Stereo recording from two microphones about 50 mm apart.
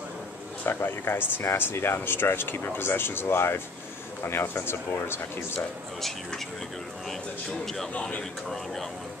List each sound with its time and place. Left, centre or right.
0.7 s speech: left
5.9 s speech: centre
7.5 s speech: centre
7.9 s a man's voice: left
8.2 s a man's voice: centre